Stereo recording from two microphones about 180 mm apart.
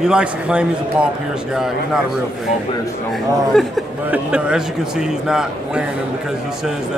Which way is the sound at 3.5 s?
Centre (ahead or behind).